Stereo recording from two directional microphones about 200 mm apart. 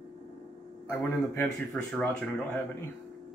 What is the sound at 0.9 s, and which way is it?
Speech, 15° left (ahead or behind).